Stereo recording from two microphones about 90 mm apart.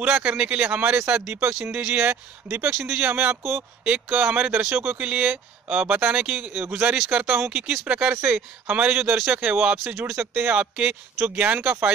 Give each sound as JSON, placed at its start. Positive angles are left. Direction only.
{"t": 0.0, "sound": "speech", "side_deg": -15}
{"t": 1.5, "sound": "speech", "side_deg": -5}
{"t": 2.9, "sound": "speech", "side_deg": -20}